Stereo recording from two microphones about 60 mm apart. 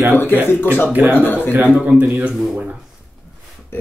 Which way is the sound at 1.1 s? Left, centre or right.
Left.